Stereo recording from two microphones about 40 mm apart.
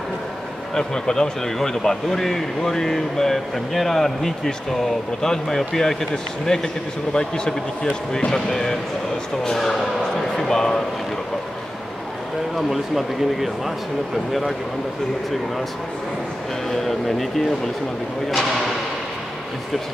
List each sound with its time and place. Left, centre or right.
0.7 s speech: centre
12.5 s speech: centre
16.7 s speech: centre